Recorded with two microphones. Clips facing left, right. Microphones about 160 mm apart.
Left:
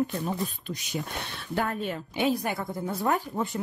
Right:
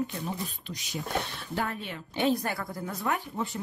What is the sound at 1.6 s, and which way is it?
Speech, 45° left (ahead or behind).